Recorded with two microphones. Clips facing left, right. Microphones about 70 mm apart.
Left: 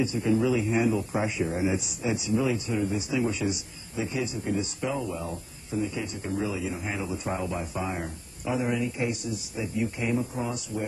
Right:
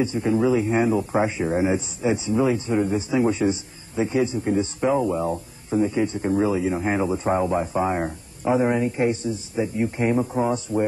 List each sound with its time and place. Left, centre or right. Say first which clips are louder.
0.0 s speech: right 4 dB; right
10.1 s speech: right 7 dB; right